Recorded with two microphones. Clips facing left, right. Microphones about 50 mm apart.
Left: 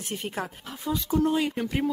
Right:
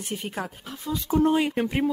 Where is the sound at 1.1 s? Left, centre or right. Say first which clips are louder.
Right 4 dB; right.